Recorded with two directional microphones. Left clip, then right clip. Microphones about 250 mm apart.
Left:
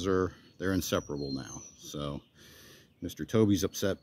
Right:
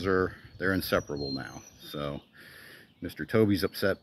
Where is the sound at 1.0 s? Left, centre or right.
Centre.